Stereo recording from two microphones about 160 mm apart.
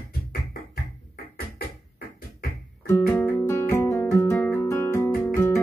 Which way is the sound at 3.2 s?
15° left (ahead or behind).